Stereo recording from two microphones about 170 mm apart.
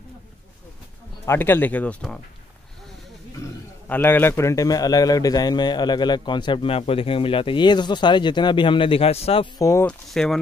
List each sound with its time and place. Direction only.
1.2 s speech: 15° left (ahead or behind)
3.9 s a man's voice: 10° left (ahead or behind); by 9.5 s 35° left (ahead or behind)
9.6 s speech: 15° left (ahead or behind)
9.8 s speech: 5° left (ahead or behind)